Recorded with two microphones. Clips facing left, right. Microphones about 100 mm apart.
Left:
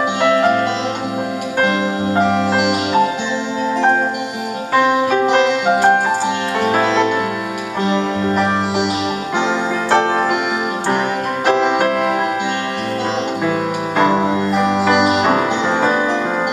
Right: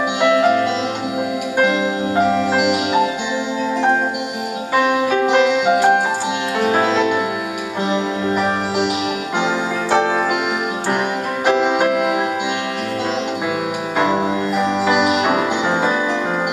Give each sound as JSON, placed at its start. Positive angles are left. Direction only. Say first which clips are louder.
{"t": 0.2, "sound": "music", "louder": "even", "side_deg": -10}
{"t": 2.1, "sound": "music", "louder": "even", "side_deg": -10}
{"t": 5.7, "sound": "music", "louder": "left 2 dB", "side_deg": 30}
{"t": 6.6, "sound": "music", "louder": "left 1 dB", "side_deg": -10}
{"t": 11.4, "sound": "music", "louder": "left 1 dB", "side_deg": -10}
{"t": 13.9, "sound": "music", "louder": "left 3 dB", "side_deg": -10}